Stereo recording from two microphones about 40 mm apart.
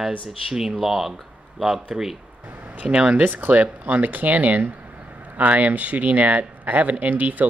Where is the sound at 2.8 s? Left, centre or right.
Right.